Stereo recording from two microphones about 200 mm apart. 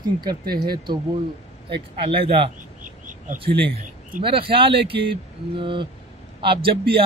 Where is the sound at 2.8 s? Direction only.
40° right (ahead or behind).